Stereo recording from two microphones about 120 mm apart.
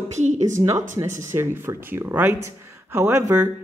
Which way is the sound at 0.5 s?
25° right (ahead or behind).